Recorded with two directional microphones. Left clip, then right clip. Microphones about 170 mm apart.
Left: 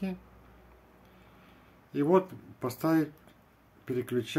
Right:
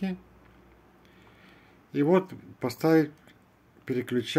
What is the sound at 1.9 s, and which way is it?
Speech, 25° right (ahead or behind).